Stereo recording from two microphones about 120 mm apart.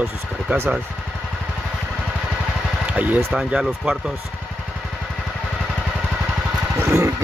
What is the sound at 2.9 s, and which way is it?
Speech, 15° right (ahead or behind).